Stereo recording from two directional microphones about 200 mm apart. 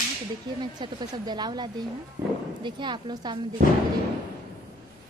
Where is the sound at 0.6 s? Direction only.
20° right (ahead or behind).